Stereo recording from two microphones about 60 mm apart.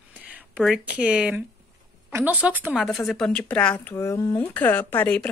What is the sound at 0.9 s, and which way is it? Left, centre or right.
A woman's voice, centre.